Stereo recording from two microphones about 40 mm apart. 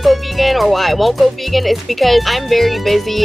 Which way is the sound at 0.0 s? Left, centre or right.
Centre.